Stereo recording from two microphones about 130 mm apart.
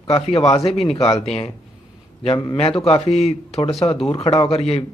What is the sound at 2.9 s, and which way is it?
A man's voice, 50° left (ahead or behind).